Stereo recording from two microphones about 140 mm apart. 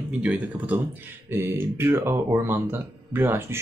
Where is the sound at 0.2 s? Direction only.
10° right (ahead or behind).